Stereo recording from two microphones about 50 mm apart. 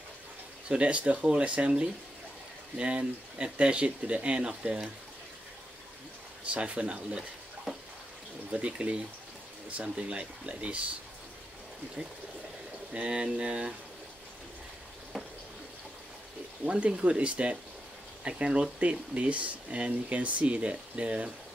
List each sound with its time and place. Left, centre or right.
0.7 s speech: right
6.5 s speech: right
8.5 s speech: right
12.9 s speech: right
15.1 s a sound: centre
16.6 s speech: right